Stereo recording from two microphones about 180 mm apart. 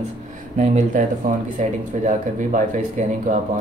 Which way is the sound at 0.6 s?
40° right (ahead or behind).